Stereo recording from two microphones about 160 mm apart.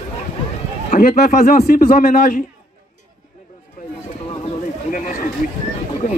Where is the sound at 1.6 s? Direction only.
60° left (ahead or behind).